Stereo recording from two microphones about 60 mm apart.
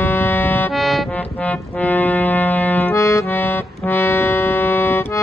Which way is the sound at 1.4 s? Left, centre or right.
Left.